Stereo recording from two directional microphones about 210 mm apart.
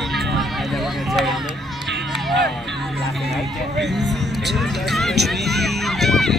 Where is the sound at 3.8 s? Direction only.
55° right (ahead or behind).